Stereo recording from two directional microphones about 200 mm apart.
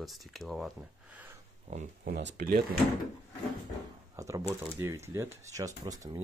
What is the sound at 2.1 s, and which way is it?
Speech, 50° right (ahead or behind).